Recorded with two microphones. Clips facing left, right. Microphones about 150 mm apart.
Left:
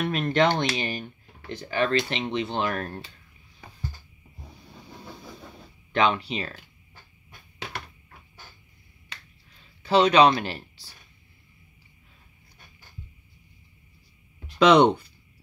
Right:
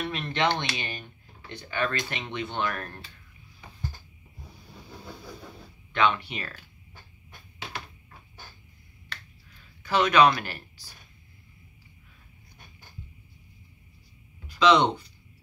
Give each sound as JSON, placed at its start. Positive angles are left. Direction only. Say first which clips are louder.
{"t": 0.0, "sound": "speech", "louder": "left 5 dB", "side_deg": 50}
{"t": 5.9, "sound": "speech", "louder": "left 2 dB", "side_deg": 35}
{"t": 9.8, "sound": "speech", "louder": "left 3 dB", "side_deg": 30}
{"t": 14.6, "sound": "speech", "louder": "left 4 dB", "side_deg": 55}